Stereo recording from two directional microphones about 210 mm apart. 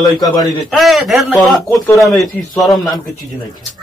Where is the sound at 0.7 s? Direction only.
Centre (ahead or behind).